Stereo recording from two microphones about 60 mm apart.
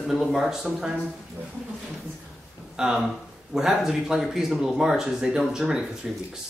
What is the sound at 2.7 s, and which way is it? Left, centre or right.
Speech, centre.